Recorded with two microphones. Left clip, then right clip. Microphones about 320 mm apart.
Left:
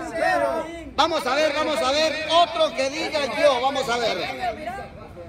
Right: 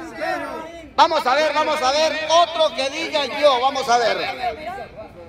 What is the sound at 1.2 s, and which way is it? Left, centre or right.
A man's voice, right.